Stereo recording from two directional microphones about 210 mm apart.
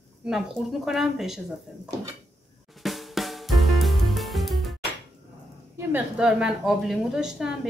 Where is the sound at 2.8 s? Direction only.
Centre (ahead or behind).